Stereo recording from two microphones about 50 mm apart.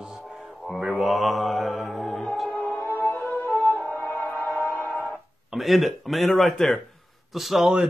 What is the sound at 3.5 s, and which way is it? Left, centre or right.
Music, left.